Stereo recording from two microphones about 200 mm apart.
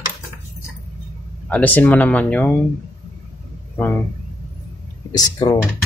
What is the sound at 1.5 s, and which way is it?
Speech, 10° left (ahead or behind).